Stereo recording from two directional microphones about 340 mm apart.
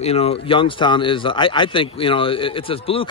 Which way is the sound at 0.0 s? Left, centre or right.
Centre.